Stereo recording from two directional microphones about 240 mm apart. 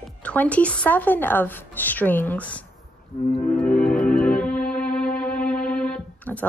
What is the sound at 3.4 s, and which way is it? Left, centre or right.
Music, centre.